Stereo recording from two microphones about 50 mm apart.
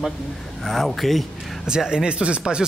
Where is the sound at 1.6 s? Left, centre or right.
Centre.